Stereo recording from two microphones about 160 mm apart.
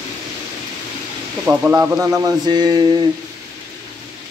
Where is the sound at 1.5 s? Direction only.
10° right (ahead or behind).